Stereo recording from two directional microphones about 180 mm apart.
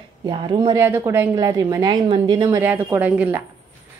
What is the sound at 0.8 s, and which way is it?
A woman's voice, 15° right (ahead or behind).